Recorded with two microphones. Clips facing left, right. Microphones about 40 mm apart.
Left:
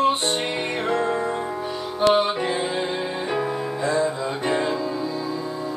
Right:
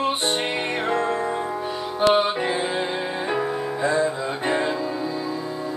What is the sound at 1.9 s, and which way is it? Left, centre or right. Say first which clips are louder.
Music: even; centre.